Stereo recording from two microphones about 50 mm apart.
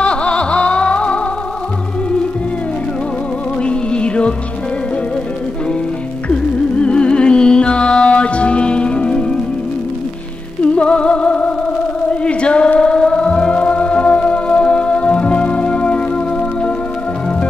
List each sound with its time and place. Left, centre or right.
0.0 s music: left
3.6 s music: left
6.2 s music: left
10.6 s music: left